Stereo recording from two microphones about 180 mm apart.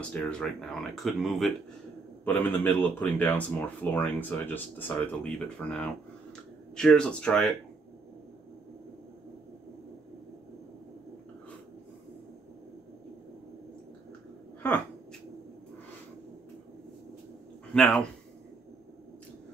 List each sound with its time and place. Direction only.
0.1 s speech: 5° left (ahead or behind)
17.7 s speech: 5° left (ahead or behind)